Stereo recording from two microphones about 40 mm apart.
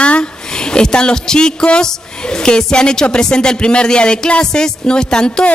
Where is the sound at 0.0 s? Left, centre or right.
Left.